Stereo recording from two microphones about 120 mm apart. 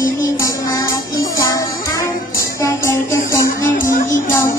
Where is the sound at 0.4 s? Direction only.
30° left (ahead or behind).